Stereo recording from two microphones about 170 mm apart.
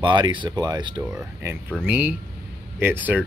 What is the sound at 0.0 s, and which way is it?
Speech, 30° right (ahead or behind).